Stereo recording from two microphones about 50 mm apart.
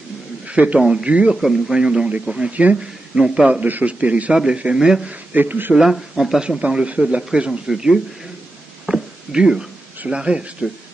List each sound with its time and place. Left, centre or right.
0.5 s a man's voice: right
0.7 s a man's voice: centre
1.3 s speech: centre
2.5 s a man's voice: right
4.7 s speech: centre
5.3 s speech: right
5.8 s speech: centre
6.6 s a man's voice: right
8.8 s a sound: centre
10.6 s speech: centre